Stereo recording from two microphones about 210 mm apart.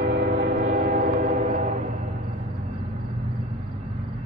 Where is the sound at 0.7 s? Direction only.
35° right (ahead or behind).